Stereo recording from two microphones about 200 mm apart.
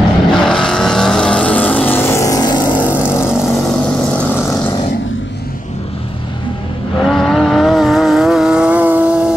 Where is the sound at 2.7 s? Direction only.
10° right (ahead or behind); by 4.9 s 15° left (ahead or behind).